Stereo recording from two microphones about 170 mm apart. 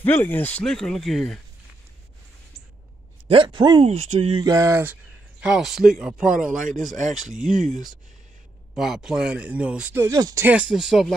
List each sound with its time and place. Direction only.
0.0 s speech: 10° left (ahead or behind)
3.3 s a sound: 30° right (ahead or behind)
3.8 s speech: 40° right (ahead or behind)
4.4 s a sound: 20° right (ahead or behind)
5.4 s speech: 5° right (ahead or behind)
6.3 s speech: 50° right (ahead or behind)
8.7 s speech: centre (ahead or behind)